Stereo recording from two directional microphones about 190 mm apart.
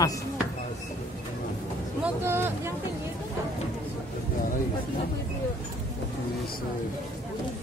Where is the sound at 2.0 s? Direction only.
10° right (ahead or behind).